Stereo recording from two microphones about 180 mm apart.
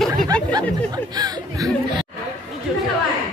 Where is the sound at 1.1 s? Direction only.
20° right (ahead or behind).